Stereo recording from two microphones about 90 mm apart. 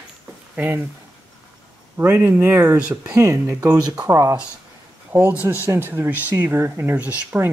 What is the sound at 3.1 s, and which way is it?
Speech, 30° right (ahead or behind).